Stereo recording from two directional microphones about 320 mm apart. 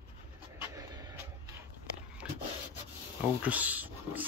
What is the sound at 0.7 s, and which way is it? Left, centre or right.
Vehicle, centre.